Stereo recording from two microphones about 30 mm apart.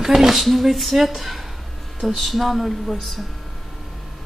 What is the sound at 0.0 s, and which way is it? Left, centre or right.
A woman's voice, centre.